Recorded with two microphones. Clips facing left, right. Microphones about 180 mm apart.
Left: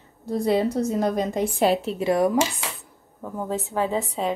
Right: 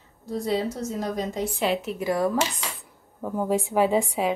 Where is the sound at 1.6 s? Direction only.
35° left (ahead or behind); by 2.8 s 10° left (ahead or behind).